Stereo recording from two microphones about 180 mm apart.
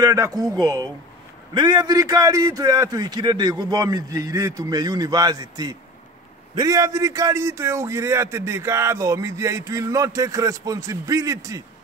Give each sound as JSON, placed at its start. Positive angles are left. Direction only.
{"t": 0.0, "sound": "a man's voice", "side_deg": -15}